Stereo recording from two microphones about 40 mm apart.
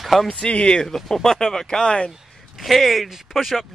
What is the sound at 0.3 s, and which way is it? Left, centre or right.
Speech, left.